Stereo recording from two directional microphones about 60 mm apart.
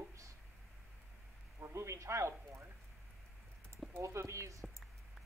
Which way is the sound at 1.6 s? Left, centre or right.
Right.